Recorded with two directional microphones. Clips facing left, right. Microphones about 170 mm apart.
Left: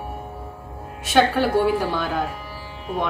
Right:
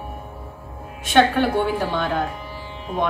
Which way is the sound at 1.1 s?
Centre (ahead or behind).